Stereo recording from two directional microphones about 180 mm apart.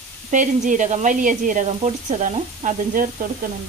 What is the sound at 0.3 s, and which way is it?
Speech, 45° right (ahead or behind).